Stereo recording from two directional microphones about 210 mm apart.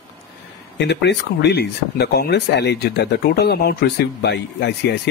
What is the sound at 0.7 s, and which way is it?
Speech, 55° left (ahead or behind).